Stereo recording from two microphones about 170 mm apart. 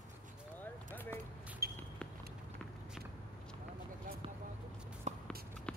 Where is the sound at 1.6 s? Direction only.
65° right (ahead or behind).